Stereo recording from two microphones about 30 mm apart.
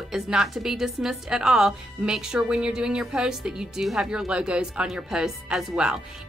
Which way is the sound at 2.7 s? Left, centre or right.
Right.